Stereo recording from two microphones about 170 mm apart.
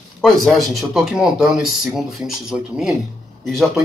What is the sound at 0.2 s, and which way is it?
Speech, centre (ahead or behind).